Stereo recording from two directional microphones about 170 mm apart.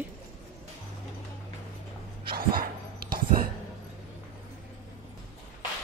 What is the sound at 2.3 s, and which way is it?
Dog, 60° right (ahead or behind).